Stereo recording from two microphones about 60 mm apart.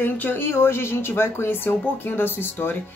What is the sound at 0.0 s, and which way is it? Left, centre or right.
Speech, left.